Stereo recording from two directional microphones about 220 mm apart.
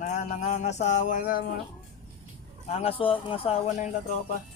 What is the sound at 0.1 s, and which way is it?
Music, 35° left (ahead or behind).